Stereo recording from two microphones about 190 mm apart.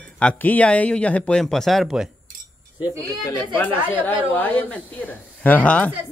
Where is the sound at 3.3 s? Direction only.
10° left (ahead or behind).